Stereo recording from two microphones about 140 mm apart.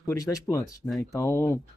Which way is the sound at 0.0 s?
25° left (ahead or behind).